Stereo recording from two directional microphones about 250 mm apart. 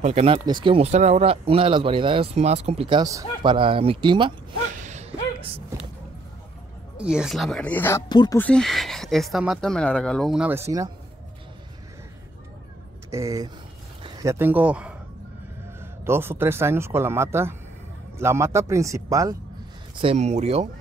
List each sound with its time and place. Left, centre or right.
0.0 s speech: right
4.8 s a sound: right
7.0 s speech: centre
13.1 s speech: centre
20.0 s speech: right